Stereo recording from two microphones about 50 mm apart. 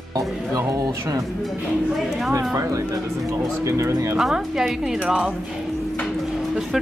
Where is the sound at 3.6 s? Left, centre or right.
Right.